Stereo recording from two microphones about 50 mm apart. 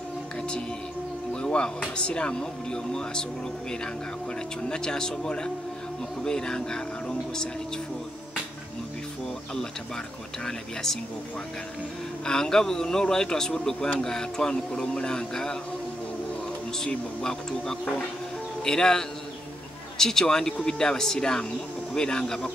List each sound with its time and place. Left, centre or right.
1.3 s a sound: centre
2.0 s speech: left
4.6 s speech: centre
10.4 s speech: centre
12.3 s speech: centre
16.9 s speech: centre